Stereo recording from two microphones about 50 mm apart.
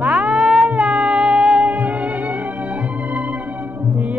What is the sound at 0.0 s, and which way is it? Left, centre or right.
Music, centre.